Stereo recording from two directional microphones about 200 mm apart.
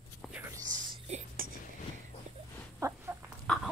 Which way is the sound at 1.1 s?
35° right (ahead or behind).